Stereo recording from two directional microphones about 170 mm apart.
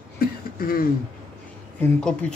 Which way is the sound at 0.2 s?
60° left (ahead or behind).